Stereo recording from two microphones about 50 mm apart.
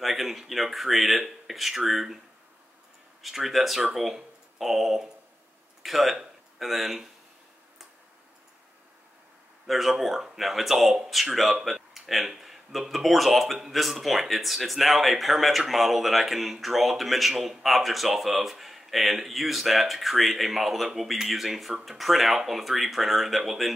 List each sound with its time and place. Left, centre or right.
0.0 s speech: centre
3.2 s speech: centre
9.7 s speech: centre